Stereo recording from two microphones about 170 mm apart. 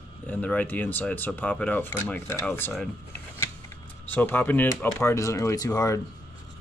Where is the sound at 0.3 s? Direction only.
10° left (ahead or behind).